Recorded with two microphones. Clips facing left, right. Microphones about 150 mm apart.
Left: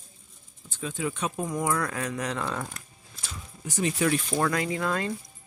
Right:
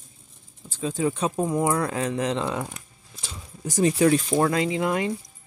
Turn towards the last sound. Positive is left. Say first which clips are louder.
# right 4 dB
turn(degrees=-20)  # may be behind; listen again after turning